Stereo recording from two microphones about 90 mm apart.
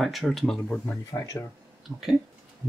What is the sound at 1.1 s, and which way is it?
Speech, 35° left (ahead or behind).